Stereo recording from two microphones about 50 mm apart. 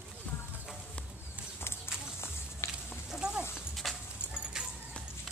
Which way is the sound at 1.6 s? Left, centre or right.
Left.